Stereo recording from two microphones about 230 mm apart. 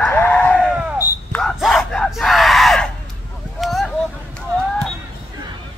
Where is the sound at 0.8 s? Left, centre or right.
Centre.